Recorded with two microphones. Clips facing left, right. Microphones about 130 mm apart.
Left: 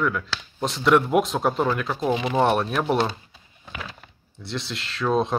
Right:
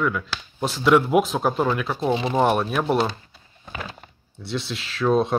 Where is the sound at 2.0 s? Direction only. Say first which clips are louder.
Right 1 dB; 30° right (ahead or behind).